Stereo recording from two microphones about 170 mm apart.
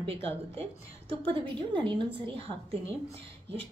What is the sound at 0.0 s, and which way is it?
Speech, 35° right (ahead or behind).